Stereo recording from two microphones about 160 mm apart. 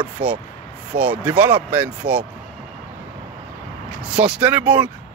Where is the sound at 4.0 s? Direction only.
5° right (ahead or behind).